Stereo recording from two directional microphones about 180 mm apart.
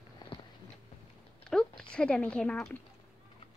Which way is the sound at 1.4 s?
5° left (ahead or behind).